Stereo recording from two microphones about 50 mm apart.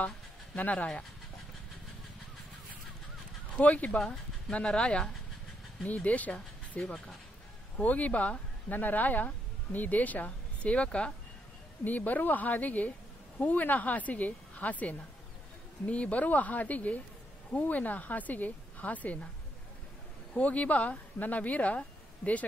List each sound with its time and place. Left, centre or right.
0.6 s a woman's voice: left
3.6 s speech: left
6.8 s speech: centre
7.7 s speech: left
11.8 s a woman's voice: left
20.3 s speech: left